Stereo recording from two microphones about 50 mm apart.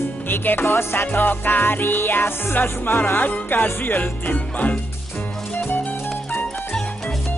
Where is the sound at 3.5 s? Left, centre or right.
Left.